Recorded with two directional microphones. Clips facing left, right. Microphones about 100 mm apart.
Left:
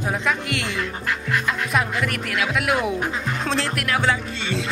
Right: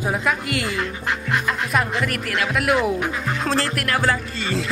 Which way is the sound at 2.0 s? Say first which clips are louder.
Right 1 dB; centre (ahead or behind).